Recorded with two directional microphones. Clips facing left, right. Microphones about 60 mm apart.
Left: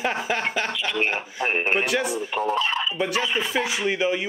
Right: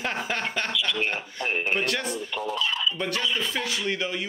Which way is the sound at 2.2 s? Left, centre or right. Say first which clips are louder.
Left 5 dB; left.